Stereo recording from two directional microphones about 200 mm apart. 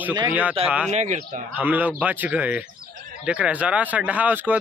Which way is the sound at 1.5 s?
10° right (ahead or behind).